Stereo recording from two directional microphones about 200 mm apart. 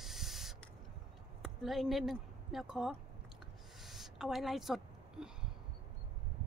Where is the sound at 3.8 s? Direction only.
Centre (ahead or behind).